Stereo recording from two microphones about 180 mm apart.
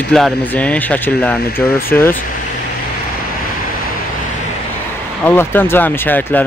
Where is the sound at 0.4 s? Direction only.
10° left (ahead or behind).